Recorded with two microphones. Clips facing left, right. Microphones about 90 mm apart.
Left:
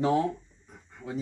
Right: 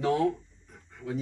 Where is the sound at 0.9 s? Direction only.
15° left (ahead or behind).